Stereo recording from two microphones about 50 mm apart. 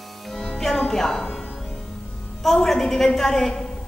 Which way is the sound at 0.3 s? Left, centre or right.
Centre.